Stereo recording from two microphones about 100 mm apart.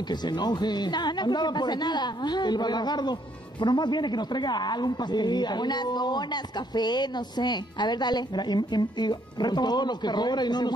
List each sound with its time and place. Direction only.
0.1 s a man's voice: 45° left (ahead or behind)